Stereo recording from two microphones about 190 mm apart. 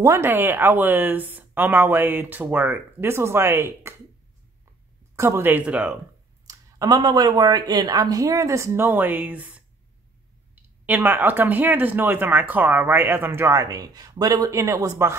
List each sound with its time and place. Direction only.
0.0 s speech: 15° right (ahead or behind)
5.1 s speech: 15° right (ahead or behind)
6.4 s speech: 20° right (ahead or behind)